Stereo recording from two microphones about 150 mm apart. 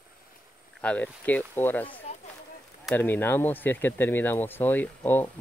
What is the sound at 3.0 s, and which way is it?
Speech, 15° left (ahead or behind).